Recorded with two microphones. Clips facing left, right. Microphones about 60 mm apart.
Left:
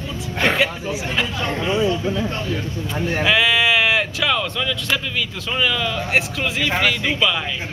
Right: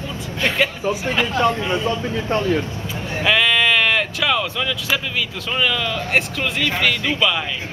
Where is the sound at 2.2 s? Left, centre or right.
Right.